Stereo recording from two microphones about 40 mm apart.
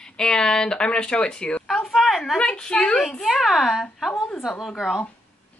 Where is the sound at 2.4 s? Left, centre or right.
Left.